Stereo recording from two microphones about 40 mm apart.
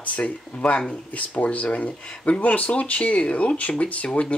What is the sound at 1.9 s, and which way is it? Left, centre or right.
Speech, left.